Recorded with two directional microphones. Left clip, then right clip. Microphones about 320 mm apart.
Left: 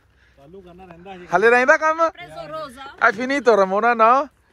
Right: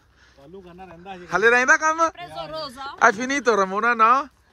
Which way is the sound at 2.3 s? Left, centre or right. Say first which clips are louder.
Even; right.